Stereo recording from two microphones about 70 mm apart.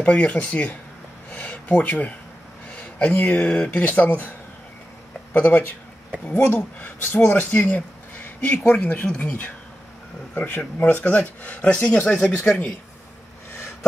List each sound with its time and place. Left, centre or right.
0.0 s speech: centre
1.3 s a sound: left
3.2 s speech: left
5.3 s speech: left